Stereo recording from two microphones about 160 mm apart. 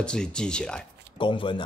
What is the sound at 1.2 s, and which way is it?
Speech, 30° left (ahead or behind).